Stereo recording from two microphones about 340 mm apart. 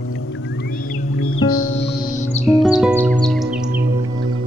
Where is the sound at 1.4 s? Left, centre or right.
Left.